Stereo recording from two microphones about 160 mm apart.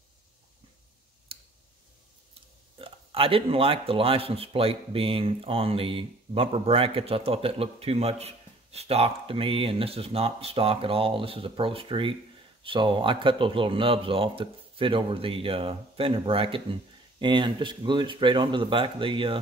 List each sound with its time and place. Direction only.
2.8 s speech: 35° right (ahead or behind)